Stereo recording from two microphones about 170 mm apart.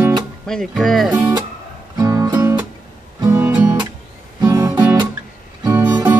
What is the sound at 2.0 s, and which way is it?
Music, 20° right (ahead or behind).